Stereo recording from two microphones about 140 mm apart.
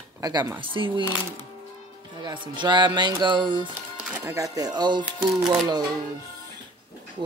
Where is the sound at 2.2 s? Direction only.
35° right (ahead or behind).